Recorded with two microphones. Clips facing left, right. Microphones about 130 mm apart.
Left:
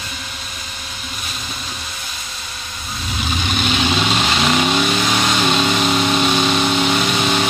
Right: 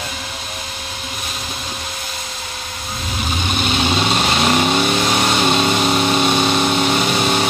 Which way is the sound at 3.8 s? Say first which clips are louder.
Right 2 dB; 15° right (ahead or behind).